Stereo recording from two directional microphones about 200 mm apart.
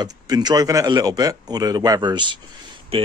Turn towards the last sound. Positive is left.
turn(degrees=-30)  # may be behind; listen again after turning